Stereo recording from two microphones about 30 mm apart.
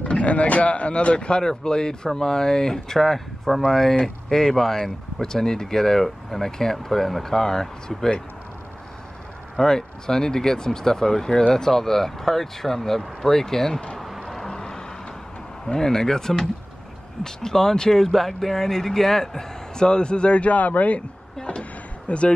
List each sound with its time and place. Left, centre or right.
0.1 s speech: left
1.4 s speech: left; by 7.2 s centre
7.2 s speech: centre
9.6 s speech: left
13.9 s a sound: centre
14.5 s vehicle: left
15.6 s speech: centre
19.7 s speech: left
21.5 s a sound: left